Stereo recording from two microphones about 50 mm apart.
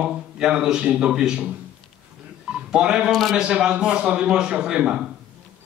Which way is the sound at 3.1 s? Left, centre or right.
Centre.